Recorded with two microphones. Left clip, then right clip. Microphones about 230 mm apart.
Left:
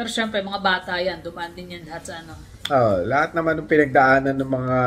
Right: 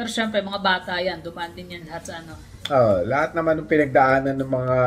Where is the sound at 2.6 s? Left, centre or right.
Centre.